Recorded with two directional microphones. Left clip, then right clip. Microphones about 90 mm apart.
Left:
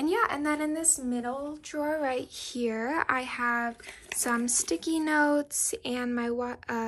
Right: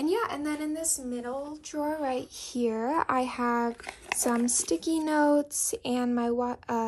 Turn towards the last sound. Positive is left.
turn(degrees=-40)  # may be behind; listen again after turning